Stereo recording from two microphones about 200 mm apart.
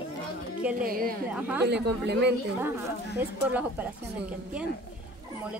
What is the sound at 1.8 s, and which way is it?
Speech, 55° right (ahead or behind).